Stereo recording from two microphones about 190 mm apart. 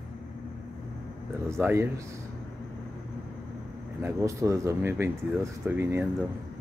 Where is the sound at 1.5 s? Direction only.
15° right (ahead or behind).